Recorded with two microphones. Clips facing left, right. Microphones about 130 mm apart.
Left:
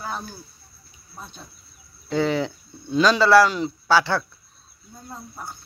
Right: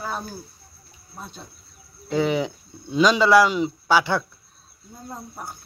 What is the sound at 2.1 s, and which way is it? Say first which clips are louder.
Speech: even; 15° right (ahead or behind).